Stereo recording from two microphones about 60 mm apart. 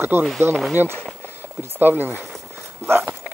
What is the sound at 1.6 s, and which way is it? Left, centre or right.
Speech, right.